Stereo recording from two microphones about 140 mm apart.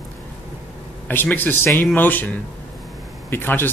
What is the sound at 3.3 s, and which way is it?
Speech, 15° left (ahead or behind).